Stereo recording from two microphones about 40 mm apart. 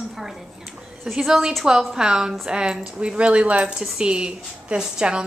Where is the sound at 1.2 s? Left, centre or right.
Centre.